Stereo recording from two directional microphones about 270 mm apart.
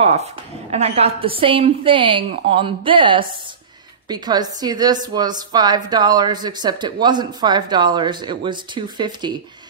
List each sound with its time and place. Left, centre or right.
0.0 s a woman's voice: right